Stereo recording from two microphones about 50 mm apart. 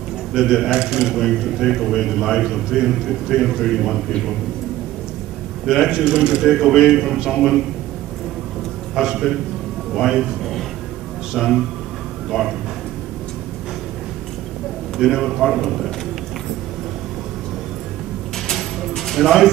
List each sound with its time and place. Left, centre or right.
0.4 s a man's voice: centre
5.7 s a man's voice: centre
9.9 s a man's voice: centre
15.0 s a man's voice: centre
18.5 s music: centre